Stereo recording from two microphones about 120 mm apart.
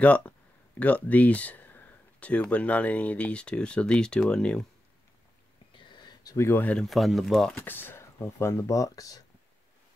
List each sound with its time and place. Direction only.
0.0 s speech: 10° left (ahead or behind)
5.9 s a sound: 35° left (ahead or behind)
6.3 s speech: 20° left (ahead or behind)
6.9 s speech: centre (ahead or behind)
7.5 s speech: 15° left (ahead or behind)